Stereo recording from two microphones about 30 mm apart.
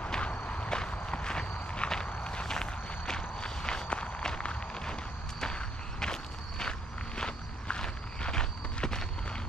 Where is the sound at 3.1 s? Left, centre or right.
Left.